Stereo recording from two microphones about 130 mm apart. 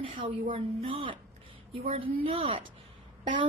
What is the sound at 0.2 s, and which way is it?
A woman's voice, 40° right (ahead or behind).